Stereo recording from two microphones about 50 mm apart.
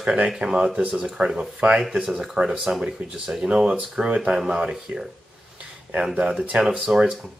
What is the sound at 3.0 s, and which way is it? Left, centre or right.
Speech, right.